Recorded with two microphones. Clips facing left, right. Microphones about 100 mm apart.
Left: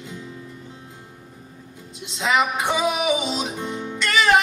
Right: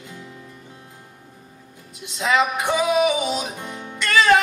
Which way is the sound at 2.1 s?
20° left (ahead or behind).